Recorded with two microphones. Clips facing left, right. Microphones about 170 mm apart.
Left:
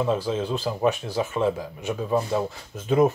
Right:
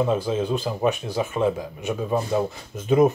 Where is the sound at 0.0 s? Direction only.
15° right (ahead or behind).